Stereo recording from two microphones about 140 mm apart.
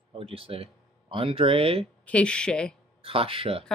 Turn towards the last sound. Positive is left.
turn(degrees=-40)  # may be behind; listen again after turning